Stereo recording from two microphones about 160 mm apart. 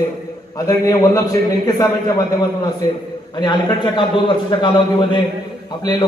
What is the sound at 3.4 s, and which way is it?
A man's voice, 30° left (ahead or behind).